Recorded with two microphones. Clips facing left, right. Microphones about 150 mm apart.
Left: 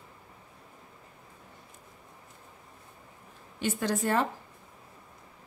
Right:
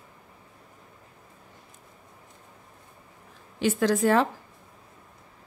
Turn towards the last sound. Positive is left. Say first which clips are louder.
# right 6 dB
turn(degrees=-90)